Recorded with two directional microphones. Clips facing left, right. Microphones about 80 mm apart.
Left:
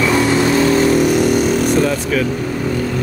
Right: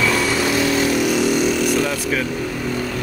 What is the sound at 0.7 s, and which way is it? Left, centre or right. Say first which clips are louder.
Vehicle: left 5 dB; left.